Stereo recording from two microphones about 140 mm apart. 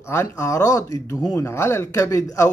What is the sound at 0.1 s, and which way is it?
Speech, 20° left (ahead or behind).